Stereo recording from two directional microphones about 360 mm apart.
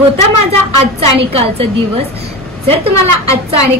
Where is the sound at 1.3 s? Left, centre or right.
Centre.